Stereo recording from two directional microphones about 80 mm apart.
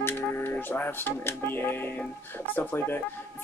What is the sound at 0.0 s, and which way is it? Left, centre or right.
Speech, left.